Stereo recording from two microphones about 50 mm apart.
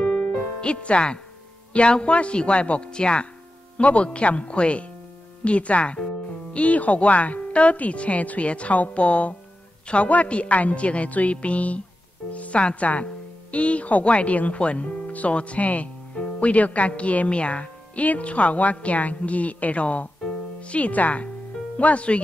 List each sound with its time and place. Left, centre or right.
0.0 s music: centre
1.7 s speech: left
20.2 s music: left
21.7 s speech: left